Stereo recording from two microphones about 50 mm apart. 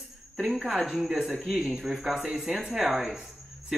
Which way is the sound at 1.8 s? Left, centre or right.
Centre.